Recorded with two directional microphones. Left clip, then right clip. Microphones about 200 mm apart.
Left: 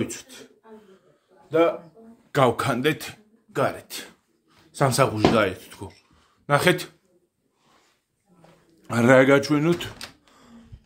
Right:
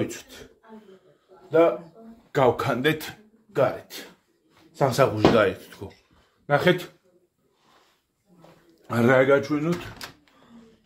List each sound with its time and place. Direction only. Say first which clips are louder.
0.0 s speech: right 1 dB; 10° left (ahead or behind)
2.3 s speech: even; 25° left (ahead or behind)
8.8 s speech: left 3 dB; 20° left (ahead or behind)
9.4 s speech: left 4 dB; 45° left (ahead or behind)